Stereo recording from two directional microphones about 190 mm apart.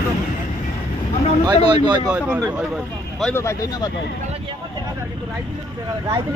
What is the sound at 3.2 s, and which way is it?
Speech, 15° left (ahead or behind).